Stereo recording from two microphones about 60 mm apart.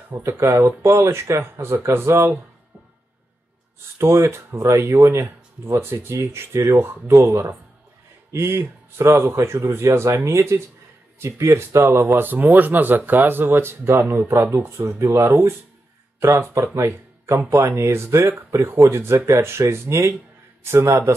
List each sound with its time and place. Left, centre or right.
0.2 s speech: right
4.0 s speech: right